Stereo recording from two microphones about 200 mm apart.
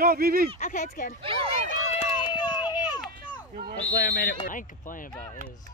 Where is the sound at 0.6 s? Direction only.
35° left (ahead or behind).